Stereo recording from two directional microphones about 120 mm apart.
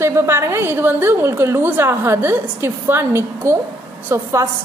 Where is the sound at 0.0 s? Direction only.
20° right (ahead or behind).